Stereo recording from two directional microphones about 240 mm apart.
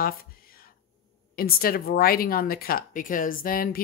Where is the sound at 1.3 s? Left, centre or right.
Left.